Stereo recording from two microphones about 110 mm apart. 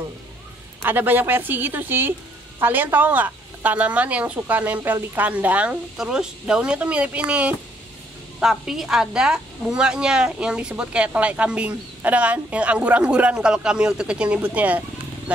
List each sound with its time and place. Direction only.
0.8 s a woman's voice: 15° right (ahead or behind)